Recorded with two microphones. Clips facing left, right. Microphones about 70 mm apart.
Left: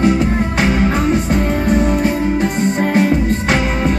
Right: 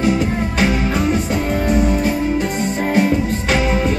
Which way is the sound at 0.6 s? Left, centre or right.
Left.